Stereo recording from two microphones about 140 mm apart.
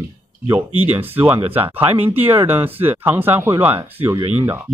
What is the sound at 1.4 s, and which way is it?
Speech, 45° right (ahead or behind).